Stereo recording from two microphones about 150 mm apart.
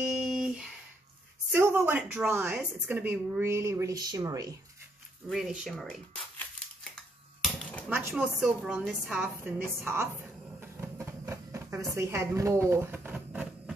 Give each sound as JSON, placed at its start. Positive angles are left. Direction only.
{"t": 0.0, "sound": "a sound", "side_deg": -10}
{"t": 1.5, "sound": "a woman's voice", "side_deg": -15}
{"t": 5.3, "sound": "speech", "side_deg": -5}
{"t": 7.9, "sound": "a woman's voice", "side_deg": -10}
{"t": 9.4, "sound": "a woman's voice", "side_deg": -15}
{"t": 10.6, "sound": "a sound", "side_deg": -15}